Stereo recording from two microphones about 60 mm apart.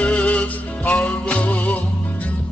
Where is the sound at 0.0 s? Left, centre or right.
Left.